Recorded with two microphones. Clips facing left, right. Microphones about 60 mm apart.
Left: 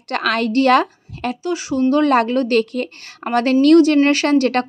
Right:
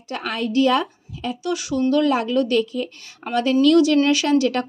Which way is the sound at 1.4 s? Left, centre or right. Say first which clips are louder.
Left 3 dB; left.